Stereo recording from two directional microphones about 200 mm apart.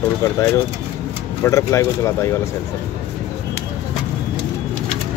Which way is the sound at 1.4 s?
15° left (ahead or behind).